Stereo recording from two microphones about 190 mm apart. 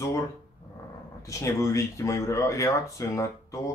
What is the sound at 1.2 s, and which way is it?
Speech, 15° left (ahead or behind).